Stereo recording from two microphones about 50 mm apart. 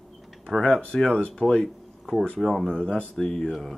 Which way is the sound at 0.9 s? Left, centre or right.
Centre.